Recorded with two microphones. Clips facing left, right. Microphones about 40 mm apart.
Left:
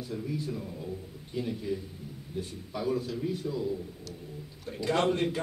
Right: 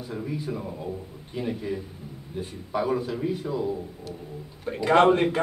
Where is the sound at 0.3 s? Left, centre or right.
Centre.